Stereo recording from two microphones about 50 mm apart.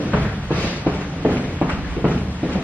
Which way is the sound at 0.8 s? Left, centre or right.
Right.